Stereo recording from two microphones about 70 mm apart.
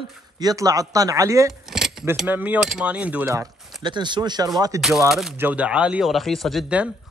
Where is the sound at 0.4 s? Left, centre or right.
Right.